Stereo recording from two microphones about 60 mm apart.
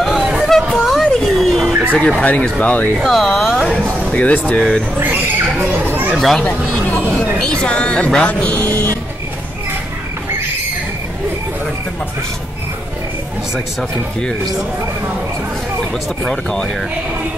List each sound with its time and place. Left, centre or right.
0.0 s a sound: centre
1.2 s dog: centre
1.7 s a sound: right
2.2 s speech: left
3.0 s speech: centre
4.1 s speech: left
4.6 s speech: centre
5.6 s a child's voice: right
6.1 s speech: centre
7.3 s speech: centre; by 8.9 s left
16.3 s speech: centre